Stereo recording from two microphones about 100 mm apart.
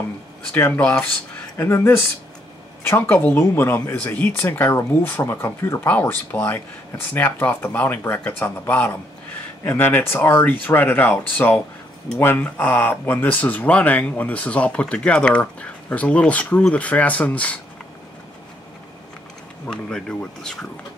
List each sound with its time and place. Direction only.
0.6 s speech: 15° left (ahead or behind)
5.9 s speech: 15° left (ahead or behind)
19.7 s speech: 10° left (ahead or behind)